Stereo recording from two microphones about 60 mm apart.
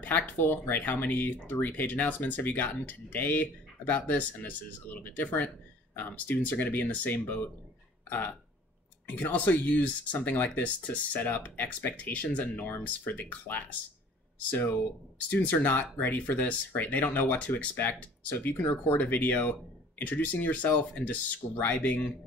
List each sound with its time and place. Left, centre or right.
0.0 s speech: left
9.0 s speech: left